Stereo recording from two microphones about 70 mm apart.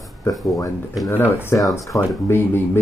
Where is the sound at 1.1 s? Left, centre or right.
Left.